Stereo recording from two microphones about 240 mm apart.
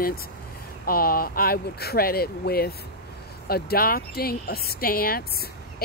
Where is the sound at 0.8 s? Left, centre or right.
Left.